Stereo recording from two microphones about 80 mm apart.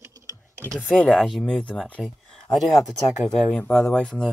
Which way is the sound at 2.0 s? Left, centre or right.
Centre.